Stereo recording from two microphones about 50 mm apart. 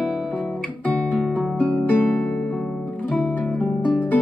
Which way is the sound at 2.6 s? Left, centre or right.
Centre.